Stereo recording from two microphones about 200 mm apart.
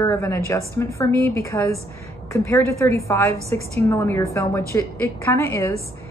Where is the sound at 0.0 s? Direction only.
15° left (ahead or behind).